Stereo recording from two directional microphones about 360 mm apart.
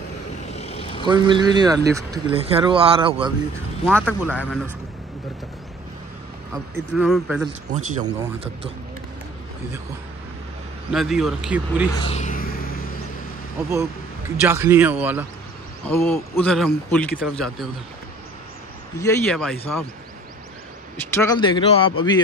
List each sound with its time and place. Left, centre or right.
0.5 s vehicle: centre
1.0 s speech: centre
3.8 s speech: centre
6.5 s speech: centre
7.7 s speech: centre
10.9 s speech: centre
12.0 s vehicle: centre
14.3 s speech: centre
15.8 s speech: centre
18.9 s speech: centre
21.1 s speech: centre